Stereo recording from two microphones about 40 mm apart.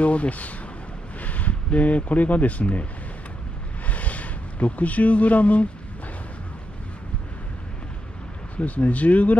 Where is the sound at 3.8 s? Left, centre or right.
Left.